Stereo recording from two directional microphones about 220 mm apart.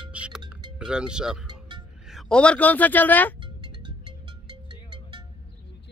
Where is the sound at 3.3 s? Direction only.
20° right (ahead or behind).